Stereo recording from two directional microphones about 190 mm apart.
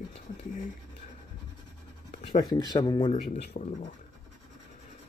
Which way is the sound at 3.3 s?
40° left (ahead or behind).